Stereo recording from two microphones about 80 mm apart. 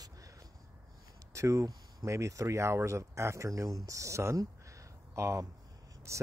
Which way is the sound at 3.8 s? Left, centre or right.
Right.